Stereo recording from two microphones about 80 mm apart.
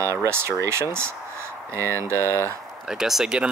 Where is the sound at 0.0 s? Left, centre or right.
Right.